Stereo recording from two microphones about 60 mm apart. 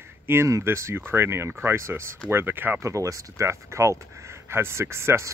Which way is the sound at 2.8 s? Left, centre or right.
Right.